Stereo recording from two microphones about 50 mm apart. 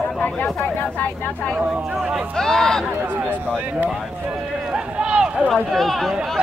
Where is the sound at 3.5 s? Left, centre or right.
Right.